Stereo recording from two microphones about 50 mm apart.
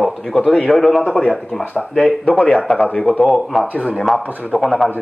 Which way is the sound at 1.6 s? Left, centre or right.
Left.